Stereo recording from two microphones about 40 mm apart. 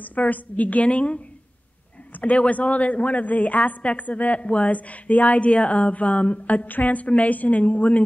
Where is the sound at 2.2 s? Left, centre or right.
Left.